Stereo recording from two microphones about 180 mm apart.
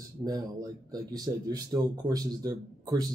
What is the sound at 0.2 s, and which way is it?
Speech, 20° right (ahead or behind).